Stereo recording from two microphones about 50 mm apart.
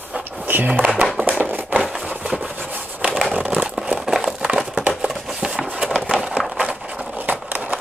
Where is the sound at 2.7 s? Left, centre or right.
Right.